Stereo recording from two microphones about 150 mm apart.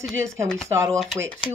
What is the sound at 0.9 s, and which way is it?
Speech, centre (ahead or behind).